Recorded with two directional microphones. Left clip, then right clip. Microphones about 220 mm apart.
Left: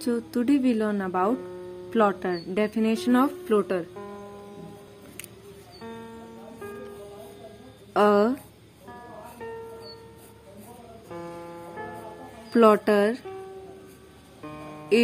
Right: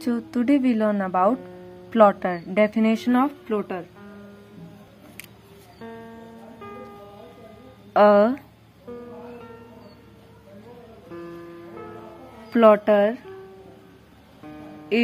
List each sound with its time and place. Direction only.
0.0 s speech: 15° left (ahead or behind)
3.5 s speech: 30° left (ahead or behind)
7.9 s speech: 10° left (ahead or behind)
12.4 s speech: 15° left (ahead or behind)